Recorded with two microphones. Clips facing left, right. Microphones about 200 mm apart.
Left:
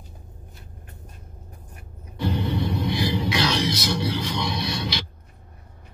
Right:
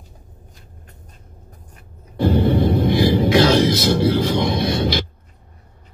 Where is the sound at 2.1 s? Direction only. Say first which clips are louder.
Right 9 dB; 55° right (ahead or behind).